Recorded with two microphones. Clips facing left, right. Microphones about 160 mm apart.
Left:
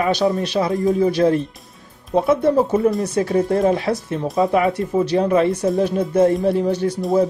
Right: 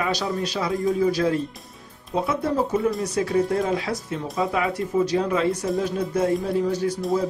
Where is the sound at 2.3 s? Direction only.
30° left (ahead or behind).